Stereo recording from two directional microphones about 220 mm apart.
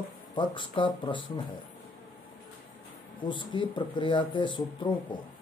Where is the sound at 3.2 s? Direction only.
20° left (ahead or behind).